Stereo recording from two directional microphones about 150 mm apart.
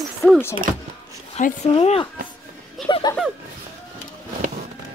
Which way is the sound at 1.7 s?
40° left (ahead or behind).